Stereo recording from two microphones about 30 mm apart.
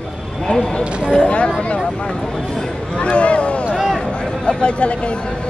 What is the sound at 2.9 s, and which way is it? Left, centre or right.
Speech, left.